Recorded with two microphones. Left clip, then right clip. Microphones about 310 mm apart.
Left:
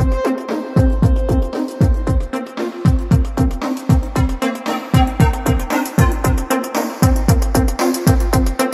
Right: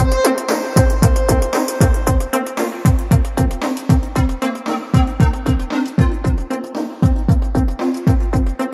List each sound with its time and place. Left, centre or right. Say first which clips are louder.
0.1 s music: right 5 dB; right
1.2 s music: right 6 dB; right
3.3 s music: even; centre; by 6.8 s left
7.0 s music: left 3 dB; left